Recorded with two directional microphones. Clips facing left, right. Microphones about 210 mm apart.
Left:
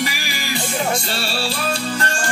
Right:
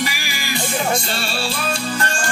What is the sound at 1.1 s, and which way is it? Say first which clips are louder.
Speech: left 1 dB; 35° left (ahead or behind).